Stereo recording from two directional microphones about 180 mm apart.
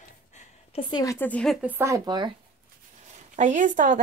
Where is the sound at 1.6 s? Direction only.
10° right (ahead or behind).